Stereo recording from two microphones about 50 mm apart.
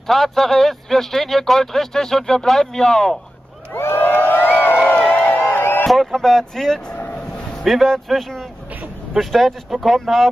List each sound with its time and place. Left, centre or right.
0.0 s a man's voice: centre
3.7 s a sound: left
5.9 s speech: centre